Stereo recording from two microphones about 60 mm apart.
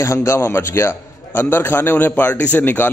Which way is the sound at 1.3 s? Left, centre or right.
Left.